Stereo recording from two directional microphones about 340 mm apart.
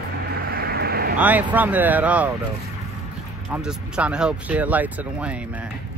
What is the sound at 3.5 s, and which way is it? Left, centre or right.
Speech, centre.